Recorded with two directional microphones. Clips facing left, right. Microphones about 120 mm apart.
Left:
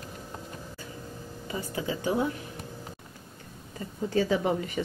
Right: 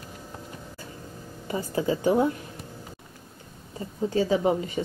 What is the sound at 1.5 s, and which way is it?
Speech, 35° right (ahead or behind).